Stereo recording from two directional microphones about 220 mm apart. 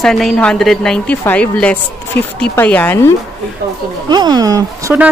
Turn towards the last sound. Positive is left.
turn(degrees=-10)  # may be behind; listen again after turning